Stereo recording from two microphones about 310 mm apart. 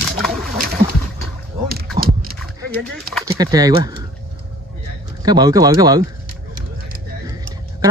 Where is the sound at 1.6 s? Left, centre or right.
Right.